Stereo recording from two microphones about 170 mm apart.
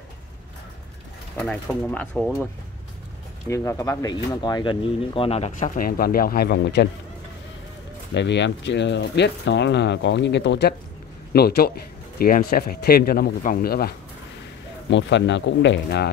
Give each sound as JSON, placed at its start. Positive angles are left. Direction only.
{"t": 1.3, "sound": "speech", "side_deg": 5}
{"t": 3.4, "sound": "speech", "side_deg": 20}
{"t": 5.8, "sound": "speech", "side_deg": 60}
{"t": 8.1, "sound": "speech", "side_deg": 90}
{"t": 11.3, "sound": "speech", "side_deg": 65}
{"t": 14.9, "sound": "speech", "side_deg": 90}